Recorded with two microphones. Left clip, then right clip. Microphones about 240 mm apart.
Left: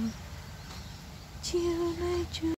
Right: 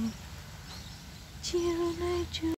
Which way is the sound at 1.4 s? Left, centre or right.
Centre.